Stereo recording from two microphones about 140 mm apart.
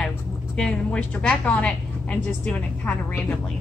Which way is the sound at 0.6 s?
5° left (ahead or behind).